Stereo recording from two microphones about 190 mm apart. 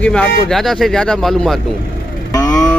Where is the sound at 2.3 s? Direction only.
20° left (ahead or behind).